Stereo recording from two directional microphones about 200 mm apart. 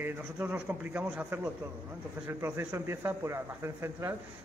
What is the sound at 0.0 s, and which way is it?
Speech, 10° right (ahead or behind).